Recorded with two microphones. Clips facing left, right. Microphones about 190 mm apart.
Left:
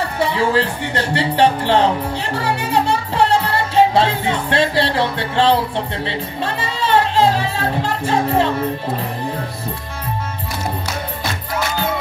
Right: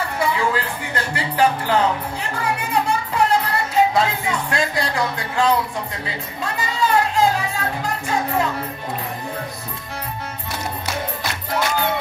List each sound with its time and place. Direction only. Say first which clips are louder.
0.2 s speech: left 5 dB; 30° left (ahead or behind)
2.3 s music: left 3 dB; 30° left (ahead or behind)